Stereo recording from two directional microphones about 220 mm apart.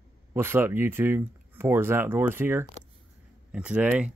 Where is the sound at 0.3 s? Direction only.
10° right (ahead or behind).